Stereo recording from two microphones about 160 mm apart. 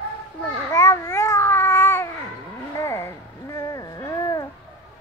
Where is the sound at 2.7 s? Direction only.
15° left (ahead or behind).